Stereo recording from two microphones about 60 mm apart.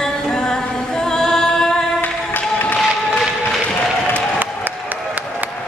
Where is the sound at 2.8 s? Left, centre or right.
Centre.